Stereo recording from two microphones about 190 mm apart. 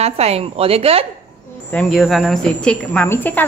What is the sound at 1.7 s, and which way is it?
A woman's voice, 5° left (ahead or behind).